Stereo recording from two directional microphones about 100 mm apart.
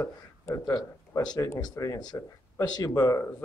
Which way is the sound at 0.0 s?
30° left (ahead or behind).